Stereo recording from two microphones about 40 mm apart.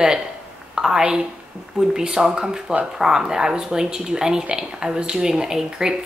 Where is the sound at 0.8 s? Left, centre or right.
Right.